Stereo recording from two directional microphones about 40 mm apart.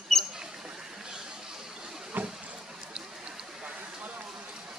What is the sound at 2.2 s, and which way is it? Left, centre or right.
Boat, right.